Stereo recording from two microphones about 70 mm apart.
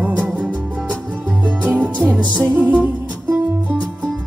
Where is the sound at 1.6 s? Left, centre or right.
Right.